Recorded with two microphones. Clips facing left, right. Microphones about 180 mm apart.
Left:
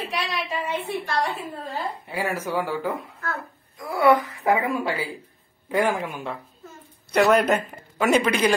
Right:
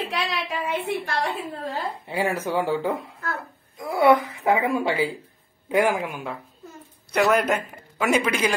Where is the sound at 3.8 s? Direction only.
25° right (ahead or behind).